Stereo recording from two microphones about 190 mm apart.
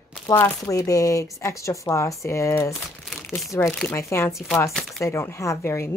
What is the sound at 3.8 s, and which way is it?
Speech, 10° left (ahead or behind).